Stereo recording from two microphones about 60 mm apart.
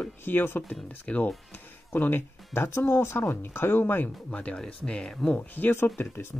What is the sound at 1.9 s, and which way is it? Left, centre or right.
Speech, left.